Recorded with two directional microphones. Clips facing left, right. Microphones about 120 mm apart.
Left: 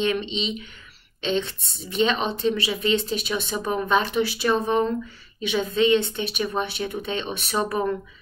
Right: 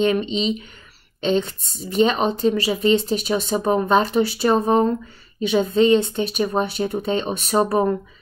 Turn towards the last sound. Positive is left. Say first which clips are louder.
# right 6 dB
turn(degrees=-35)  # may be behind; listen again after turning